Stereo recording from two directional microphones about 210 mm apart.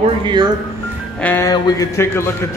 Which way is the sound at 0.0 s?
20° right (ahead or behind).